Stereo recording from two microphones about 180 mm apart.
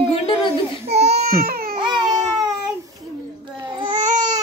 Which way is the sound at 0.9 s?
35° right (ahead or behind).